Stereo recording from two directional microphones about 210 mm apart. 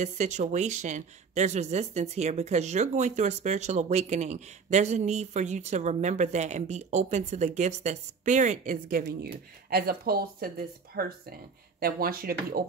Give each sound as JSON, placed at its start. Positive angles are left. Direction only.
{"t": 0.0, "sound": "speech", "side_deg": -35}